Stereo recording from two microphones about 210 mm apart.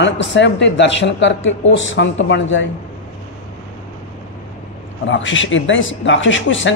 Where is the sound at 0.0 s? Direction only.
60° left (ahead or behind).